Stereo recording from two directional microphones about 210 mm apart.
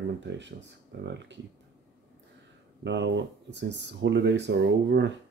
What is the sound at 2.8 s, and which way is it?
Speech, 55° right (ahead or behind).